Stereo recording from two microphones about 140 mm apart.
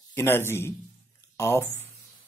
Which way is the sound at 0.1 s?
15° left (ahead or behind).